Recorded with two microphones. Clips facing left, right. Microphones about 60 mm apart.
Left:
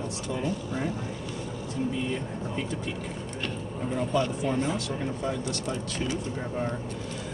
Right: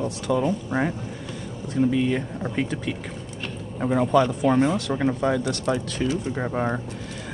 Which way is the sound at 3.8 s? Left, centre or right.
Right.